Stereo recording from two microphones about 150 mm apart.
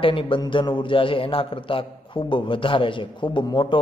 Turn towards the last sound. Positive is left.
turn(degrees=30)  # may be behind; listen again after turning